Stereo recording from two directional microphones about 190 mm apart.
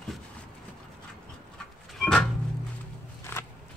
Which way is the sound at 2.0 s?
5° left (ahead or behind).